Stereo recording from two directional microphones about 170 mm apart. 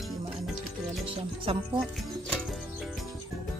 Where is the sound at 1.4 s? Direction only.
30° right (ahead or behind).